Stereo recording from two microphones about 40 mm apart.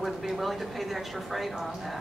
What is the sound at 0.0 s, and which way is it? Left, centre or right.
A woman's voice, centre.